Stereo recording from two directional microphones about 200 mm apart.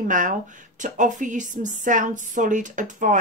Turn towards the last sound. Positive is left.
turn(degrees=-40)  # may be behind; listen again after turning